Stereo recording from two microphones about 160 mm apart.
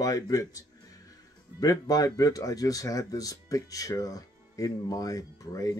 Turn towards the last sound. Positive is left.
turn(degrees=20)  # may be behind; listen again after turning